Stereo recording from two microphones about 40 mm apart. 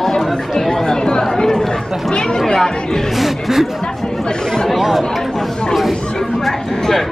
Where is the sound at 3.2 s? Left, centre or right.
Centre.